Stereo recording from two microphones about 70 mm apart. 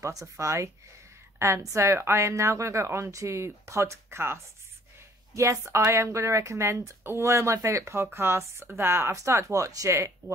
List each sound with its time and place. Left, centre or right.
0.0 s a woman's voice: right
9.1 s a woman's voice: right